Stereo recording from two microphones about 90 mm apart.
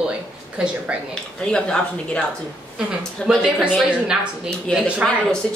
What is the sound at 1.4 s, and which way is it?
Speech, 10° left (ahead or behind).